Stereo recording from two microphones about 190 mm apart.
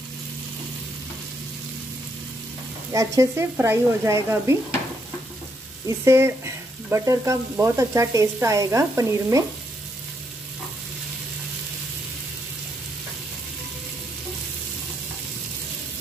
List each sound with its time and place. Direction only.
2.9 s frying: 15° right (ahead or behind)
5.9 s frying: 15° right (ahead or behind)